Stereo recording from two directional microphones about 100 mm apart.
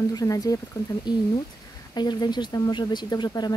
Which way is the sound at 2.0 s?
45° left (ahead or behind).